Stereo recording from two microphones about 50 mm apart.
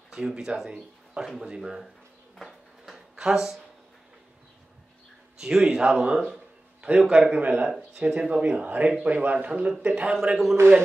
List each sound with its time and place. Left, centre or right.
0.1 s speech: centre
3.2 s speech: centre
5.4 s speech: centre
7.3 s speech: right
10.3 s speech: centre